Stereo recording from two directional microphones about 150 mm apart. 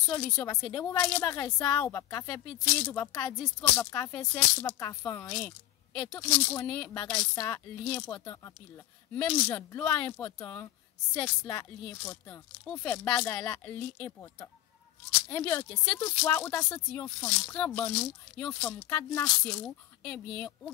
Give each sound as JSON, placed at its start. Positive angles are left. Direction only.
{"t": 0.1, "sound": "speech", "side_deg": 5}
{"t": 13.3, "sound": "speech", "side_deg": 20}
{"t": 13.7, "sound": "speech", "side_deg": 5}